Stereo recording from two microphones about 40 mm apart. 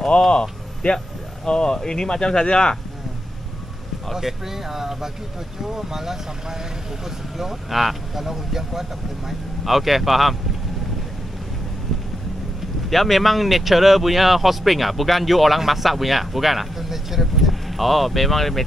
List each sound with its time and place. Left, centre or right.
0.3 s speech: left
4.1 s speech: centre
12.9 s speech: centre